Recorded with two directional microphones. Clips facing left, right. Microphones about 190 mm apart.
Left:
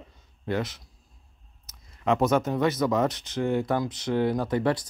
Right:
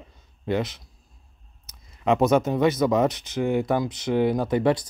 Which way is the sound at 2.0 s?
20° right (ahead or behind).